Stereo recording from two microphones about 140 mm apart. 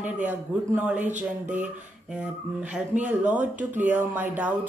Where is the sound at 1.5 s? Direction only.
60° right (ahead or behind).